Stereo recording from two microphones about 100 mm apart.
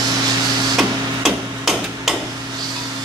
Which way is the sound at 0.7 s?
Centre (ahead or behind).